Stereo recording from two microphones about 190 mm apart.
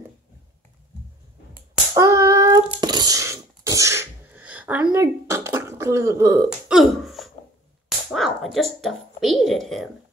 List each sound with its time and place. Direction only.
2.0 s hands: 15° right (ahead or behind)
4.9 s throat clearing: 15° right (ahead or behind)
6.7 s throat clearing: centre (ahead or behind)
8.1 s speech: centre (ahead or behind)